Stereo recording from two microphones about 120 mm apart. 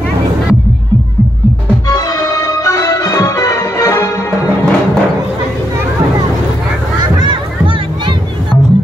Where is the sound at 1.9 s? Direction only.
30° left (ahead or behind).